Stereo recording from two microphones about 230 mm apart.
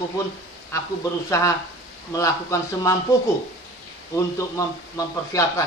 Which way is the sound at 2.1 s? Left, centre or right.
Centre.